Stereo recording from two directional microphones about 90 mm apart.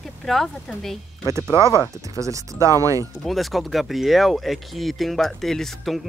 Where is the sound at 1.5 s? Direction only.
35° right (ahead or behind).